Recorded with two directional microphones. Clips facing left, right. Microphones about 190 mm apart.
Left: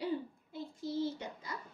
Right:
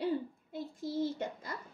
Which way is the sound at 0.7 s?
50° right (ahead or behind).